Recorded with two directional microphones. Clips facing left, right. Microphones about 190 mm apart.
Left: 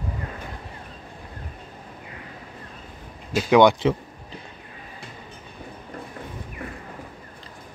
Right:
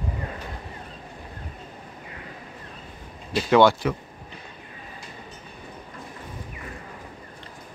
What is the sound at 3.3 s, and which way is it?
Speech, 15° left (ahead or behind).